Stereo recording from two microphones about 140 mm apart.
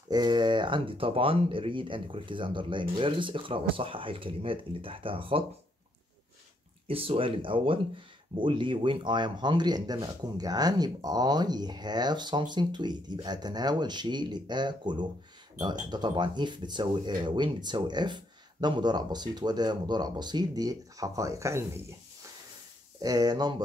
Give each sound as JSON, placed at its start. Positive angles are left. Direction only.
{"t": 0.1, "sound": "speech", "side_deg": -30}
{"t": 6.9, "sound": "speech", "side_deg": -40}
{"t": 22.9, "sound": "speech", "side_deg": -25}